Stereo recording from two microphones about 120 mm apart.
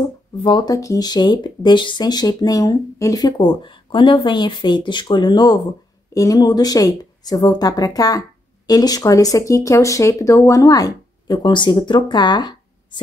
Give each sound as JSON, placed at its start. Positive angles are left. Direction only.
{"t": 0.4, "sound": "speech", "side_deg": 45}
{"t": 0.7, "sound": "speech", "side_deg": 30}